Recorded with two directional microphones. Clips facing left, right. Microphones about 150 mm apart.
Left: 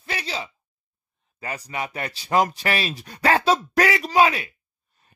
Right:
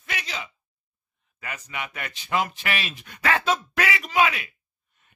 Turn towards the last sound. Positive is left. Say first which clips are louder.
# left 4 dB
turn(degrees=35)  # may be behind; listen again after turning